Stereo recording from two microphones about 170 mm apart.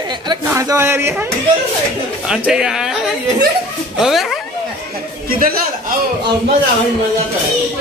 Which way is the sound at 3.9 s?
Centre (ahead or behind).